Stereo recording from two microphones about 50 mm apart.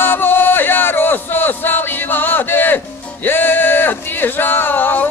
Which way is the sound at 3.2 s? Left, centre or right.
Left.